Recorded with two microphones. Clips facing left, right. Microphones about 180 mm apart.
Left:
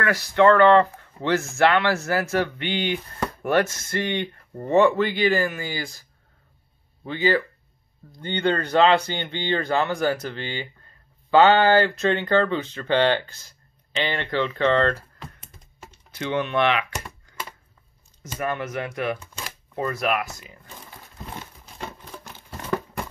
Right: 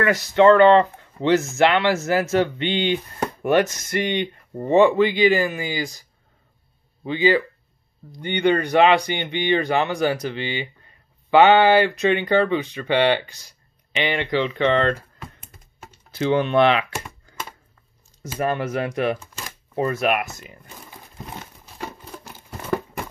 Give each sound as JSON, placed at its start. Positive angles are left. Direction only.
{"t": 0.0, "sound": "speech", "side_deg": -20}
{"t": 7.1, "sound": "speech", "side_deg": -15}
{"t": 16.1, "sound": "speech", "side_deg": -30}
{"t": 18.4, "sound": "speech", "side_deg": -30}
{"t": 21.7, "sound": "crumpling", "side_deg": -10}